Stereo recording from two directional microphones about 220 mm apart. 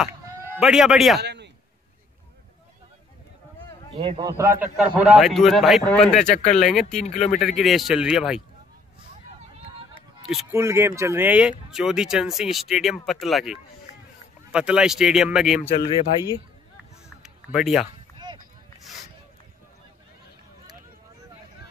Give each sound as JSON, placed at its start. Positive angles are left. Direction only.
{"t": 0.0, "sound": "speech", "side_deg": -5}
{"t": 1.2, "sound": "a sound", "side_deg": -50}
{"t": 4.0, "sound": "a man's voice", "side_deg": -25}
{"t": 4.4, "sound": "speech", "side_deg": -10}
{"t": 6.1, "sound": "speech", "side_deg": 30}
{"t": 6.6, "sound": "speech", "side_deg": 0}
{"t": 10.2, "sound": "speech", "side_deg": 0}
{"t": 17.2, "sound": "a sound", "side_deg": 0}